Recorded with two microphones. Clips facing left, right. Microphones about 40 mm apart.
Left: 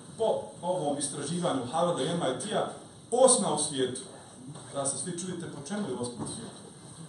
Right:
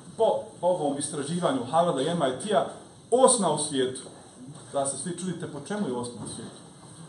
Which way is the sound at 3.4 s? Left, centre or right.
Centre.